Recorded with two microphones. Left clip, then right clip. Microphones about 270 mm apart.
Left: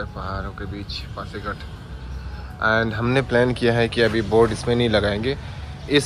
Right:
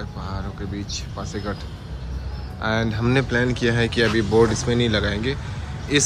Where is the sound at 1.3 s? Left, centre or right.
Centre.